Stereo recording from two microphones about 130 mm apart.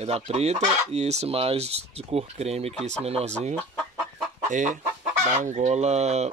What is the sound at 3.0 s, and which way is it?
Chicken, 50° right (ahead or behind).